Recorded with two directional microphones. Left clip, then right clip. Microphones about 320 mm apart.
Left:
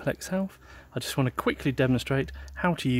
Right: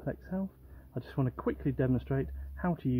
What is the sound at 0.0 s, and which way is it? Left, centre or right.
Speech, left.